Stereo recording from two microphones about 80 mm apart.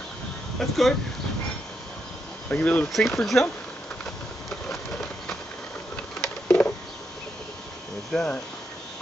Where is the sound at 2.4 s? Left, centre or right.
Centre.